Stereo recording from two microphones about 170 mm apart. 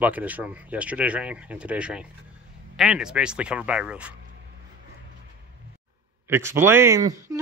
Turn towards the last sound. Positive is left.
turn(degrees=-20)  # may be behind; listen again after turning